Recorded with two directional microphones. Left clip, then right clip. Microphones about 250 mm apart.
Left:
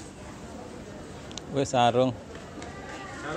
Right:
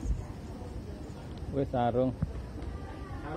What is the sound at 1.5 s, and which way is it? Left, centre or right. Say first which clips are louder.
Speech: left 7 dB; centre.